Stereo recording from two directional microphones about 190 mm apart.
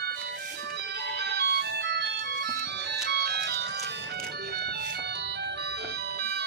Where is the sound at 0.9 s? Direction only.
60° right (ahead or behind).